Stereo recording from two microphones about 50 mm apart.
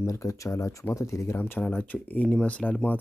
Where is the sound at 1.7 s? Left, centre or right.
Left.